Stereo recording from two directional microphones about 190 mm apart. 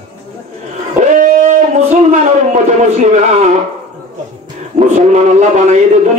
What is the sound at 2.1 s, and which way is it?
A man's voice, 40° right (ahead or behind).